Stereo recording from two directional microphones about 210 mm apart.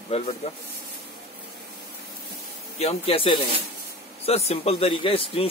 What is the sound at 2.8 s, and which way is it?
Speech, 30° left (ahead or behind).